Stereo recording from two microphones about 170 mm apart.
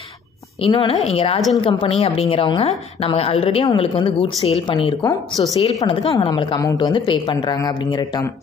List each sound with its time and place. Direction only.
0.6 s a woman's voice: 35° left (ahead or behind)